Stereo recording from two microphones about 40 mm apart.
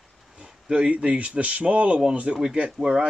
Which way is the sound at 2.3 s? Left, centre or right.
Right.